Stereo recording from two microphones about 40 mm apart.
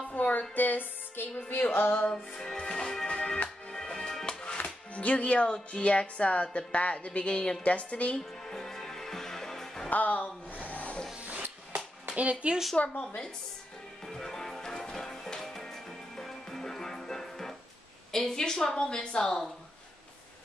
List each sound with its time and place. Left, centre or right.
0.1 s a sound: left
0.6 s music: left
2.5 s music: centre
4.9 s a woman's voice: left
5.5 s music: left
7.6 s a woman's voice: left
8.2 s music: centre
9.8 s a sound: left
12.1 s speech: right
12.8 s music: left
14.0 s music: centre
18.1 s a woman's voice: centre
18.4 s music: left